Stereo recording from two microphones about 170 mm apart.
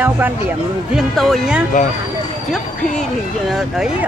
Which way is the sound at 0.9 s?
Centre (ahead or behind).